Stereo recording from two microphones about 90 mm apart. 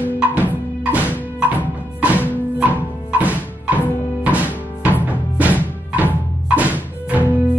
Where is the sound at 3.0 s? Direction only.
15° right (ahead or behind).